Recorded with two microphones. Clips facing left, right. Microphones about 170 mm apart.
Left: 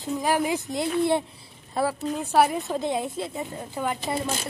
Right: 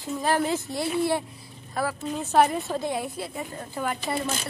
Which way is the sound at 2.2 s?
10° left (ahead or behind).